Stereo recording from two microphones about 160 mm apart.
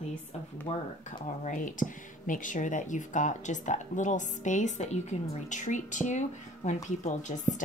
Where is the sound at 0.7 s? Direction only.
40° left (ahead or behind).